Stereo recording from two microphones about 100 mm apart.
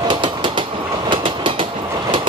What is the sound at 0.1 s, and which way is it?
Train, 55° right (ahead or behind).